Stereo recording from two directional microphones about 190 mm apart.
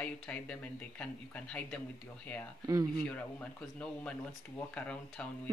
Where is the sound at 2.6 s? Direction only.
20° right (ahead or behind).